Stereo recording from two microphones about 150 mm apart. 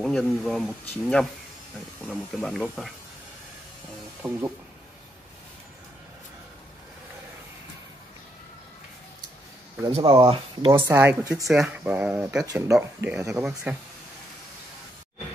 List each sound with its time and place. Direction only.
0.0 s speech: 5° left (ahead or behind)
4.2 s speech: 20° right (ahead or behind)
9.9 s speech: 35° right (ahead or behind)
10.7 s speech: 15° right (ahead or behind)
11.4 s speech: 5° right (ahead or behind)
12.4 s speech: 20° right (ahead or behind)
13.3 s speech: 5° right (ahead or behind)